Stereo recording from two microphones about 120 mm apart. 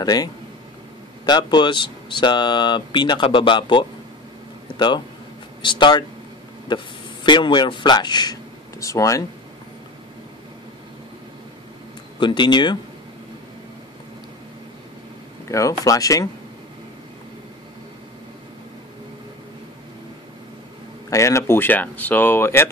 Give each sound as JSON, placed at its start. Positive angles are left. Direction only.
{"t": 0.0, "sound": "a man's voice", "side_deg": 35}
{"t": 12.2, "sound": "speech", "side_deg": 40}
{"t": 15.4, "sound": "speech", "side_deg": 25}
{"t": 21.1, "sound": "speech", "side_deg": 25}